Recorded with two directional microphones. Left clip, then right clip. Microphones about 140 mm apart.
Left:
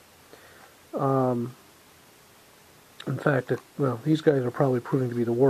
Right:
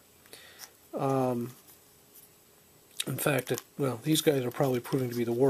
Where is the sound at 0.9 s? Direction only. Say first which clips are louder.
Left 4 dB; 20° right (ahead or behind).